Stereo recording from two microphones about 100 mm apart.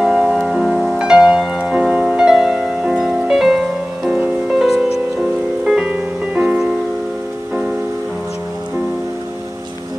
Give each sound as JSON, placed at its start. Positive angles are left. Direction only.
{"t": 0.0, "sound": "music", "side_deg": -5}